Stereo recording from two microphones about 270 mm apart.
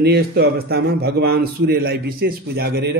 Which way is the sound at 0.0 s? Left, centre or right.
Right.